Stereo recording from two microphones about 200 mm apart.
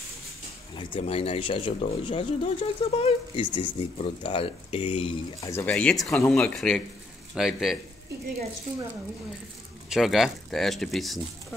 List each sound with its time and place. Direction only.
0.7 s speech: 25° left (ahead or behind)
5.5 s speech: 10° left (ahead or behind)
9.8 s speech: centre (ahead or behind)